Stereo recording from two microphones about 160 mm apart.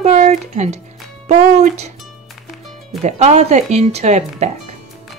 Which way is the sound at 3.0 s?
45° right (ahead or behind).